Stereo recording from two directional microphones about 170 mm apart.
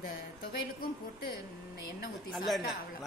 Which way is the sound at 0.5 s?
65° left (ahead or behind).